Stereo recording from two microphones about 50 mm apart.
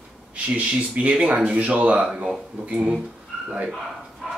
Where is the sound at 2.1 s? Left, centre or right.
Centre.